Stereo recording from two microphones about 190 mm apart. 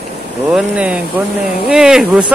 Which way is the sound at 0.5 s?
5° right (ahead or behind).